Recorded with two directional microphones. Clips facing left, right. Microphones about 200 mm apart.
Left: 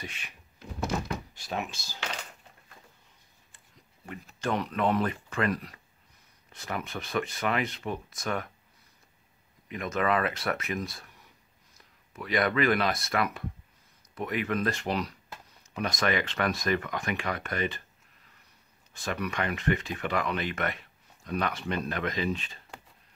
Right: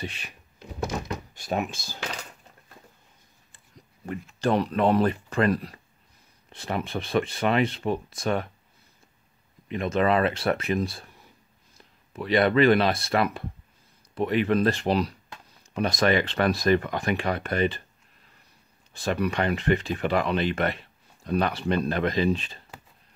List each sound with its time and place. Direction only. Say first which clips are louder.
0.0 s speech: right 7 dB; 35° right (ahead or behind)
1.3 s speech: right 6 dB; 50° right (ahead or behind)
4.4 s speech: right 6 dB; 35° right (ahead or behind)
9.7 s speech: right 5 dB; 30° right (ahead or behind)
18.9 s speech: right 6 dB; 30° right (ahead or behind)